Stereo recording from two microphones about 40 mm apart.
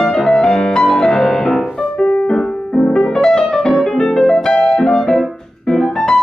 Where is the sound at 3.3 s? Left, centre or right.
Centre.